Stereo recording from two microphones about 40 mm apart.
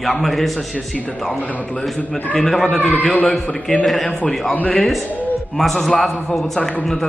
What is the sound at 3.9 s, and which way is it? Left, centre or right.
Speech, centre.